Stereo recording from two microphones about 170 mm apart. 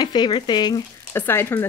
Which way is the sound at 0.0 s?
25° left (ahead or behind).